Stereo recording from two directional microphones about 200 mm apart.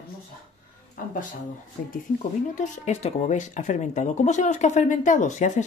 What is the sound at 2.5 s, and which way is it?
Speech, 35° left (ahead or behind).